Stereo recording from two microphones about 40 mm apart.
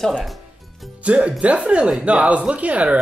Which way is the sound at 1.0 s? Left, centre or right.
Right.